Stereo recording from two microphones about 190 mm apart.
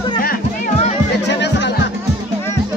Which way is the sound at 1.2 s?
65° left (ahead or behind).